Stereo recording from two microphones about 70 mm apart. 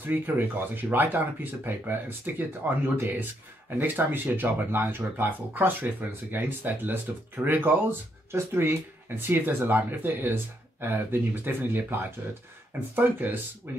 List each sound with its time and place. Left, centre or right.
0.0 s speech: right